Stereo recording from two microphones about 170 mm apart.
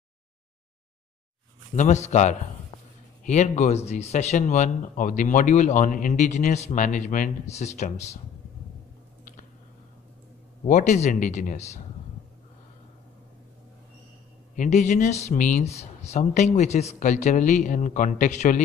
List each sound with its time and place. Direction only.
1.8 s speech: 45° left (ahead or behind)
10.6 s speech: 45° left (ahead or behind)
14.5 s speech: 45° left (ahead or behind)